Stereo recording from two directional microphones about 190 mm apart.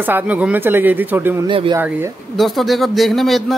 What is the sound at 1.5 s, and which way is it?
Speech, 25° right (ahead or behind).